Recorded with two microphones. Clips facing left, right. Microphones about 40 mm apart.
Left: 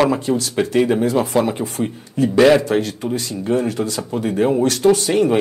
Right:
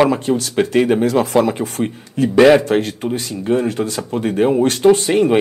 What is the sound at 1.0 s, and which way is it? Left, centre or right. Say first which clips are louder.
A man's voice: right 2 dB; right.